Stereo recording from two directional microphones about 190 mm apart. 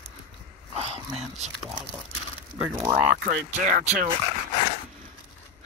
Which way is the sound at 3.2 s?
45° right (ahead or behind).